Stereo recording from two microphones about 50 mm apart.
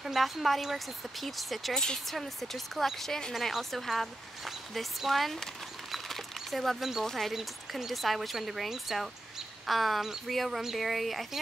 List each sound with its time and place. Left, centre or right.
0.0 s speech: centre
3.3 s speech: centre
7.1 s speech: centre